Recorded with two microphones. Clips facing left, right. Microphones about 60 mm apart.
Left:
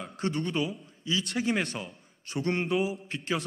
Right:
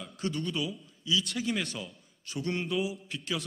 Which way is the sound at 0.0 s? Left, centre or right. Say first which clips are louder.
Left 3 dB; left.